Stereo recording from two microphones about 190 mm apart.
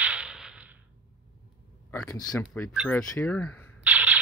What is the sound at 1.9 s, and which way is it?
Speech, 15° left (ahead or behind).